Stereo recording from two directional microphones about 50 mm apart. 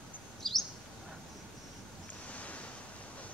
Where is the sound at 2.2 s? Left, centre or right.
Left.